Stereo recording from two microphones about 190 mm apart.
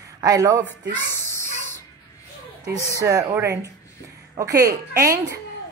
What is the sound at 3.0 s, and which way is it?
A woman's voice, 20° right (ahead or behind).